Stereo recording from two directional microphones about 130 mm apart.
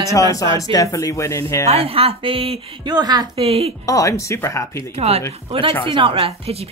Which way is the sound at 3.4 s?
50° right (ahead or behind).